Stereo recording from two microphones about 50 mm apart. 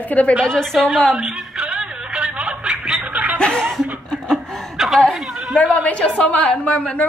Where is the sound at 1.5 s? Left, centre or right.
Centre.